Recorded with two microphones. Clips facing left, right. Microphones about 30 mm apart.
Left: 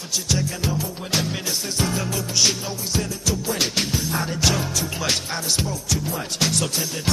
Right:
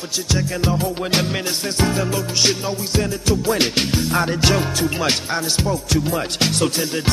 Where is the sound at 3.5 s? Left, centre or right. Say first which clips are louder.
Right 4 dB; right.